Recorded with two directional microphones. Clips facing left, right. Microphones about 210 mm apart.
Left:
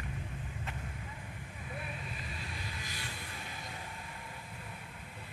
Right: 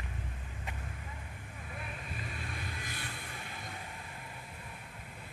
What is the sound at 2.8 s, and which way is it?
Vehicle, 55° right (ahead or behind).